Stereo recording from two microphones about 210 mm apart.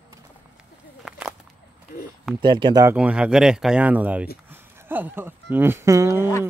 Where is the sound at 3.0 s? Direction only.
5° right (ahead or behind).